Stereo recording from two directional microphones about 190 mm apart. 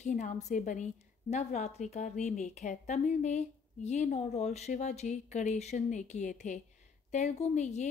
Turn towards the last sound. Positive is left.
turn(degrees=35)  # may be behind; listen again after turning